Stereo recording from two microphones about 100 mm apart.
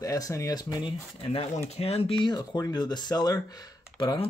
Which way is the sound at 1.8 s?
85° left.